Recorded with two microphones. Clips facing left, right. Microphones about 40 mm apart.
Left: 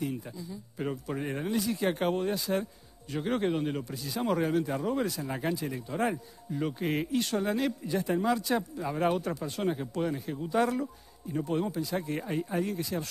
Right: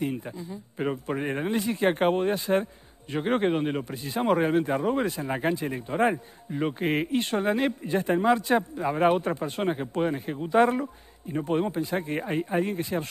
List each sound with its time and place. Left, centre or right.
0.0 s speech: right